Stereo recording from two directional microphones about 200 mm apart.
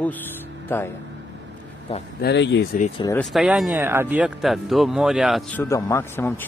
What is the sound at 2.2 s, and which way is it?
Speech, 60° left (ahead or behind).